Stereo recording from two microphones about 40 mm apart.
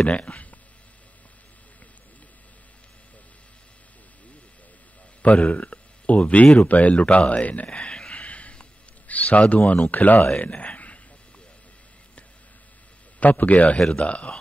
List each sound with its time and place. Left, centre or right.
0.0 s speech: left
5.2 s speech: left
8.1 s a sound: left
9.0 s speech: left
10.4 s speech: left
13.2 s speech: left
13.7 s speech: left
14.0 s speech: left